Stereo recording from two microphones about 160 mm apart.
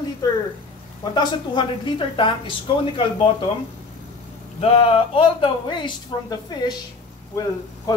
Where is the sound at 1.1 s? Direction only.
30° left (ahead or behind).